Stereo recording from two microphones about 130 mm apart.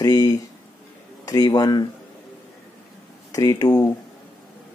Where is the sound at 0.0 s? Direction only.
30° left (ahead or behind).